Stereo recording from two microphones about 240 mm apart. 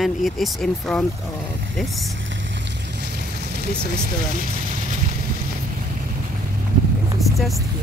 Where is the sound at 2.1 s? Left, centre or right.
Right.